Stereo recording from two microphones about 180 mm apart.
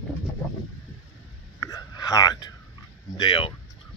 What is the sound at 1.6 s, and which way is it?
Whispering, 20° left (ahead or behind).